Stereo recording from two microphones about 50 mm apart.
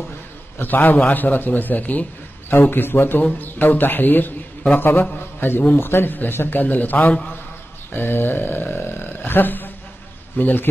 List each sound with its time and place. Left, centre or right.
0.6 s a man's voice: left
2.5 s a man's voice: left
7.9 s a man's voice: left